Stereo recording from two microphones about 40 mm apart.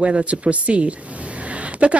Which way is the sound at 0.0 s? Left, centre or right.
Right.